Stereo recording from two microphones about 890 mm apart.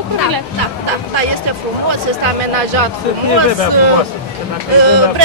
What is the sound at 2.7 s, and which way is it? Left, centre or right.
Speech, right.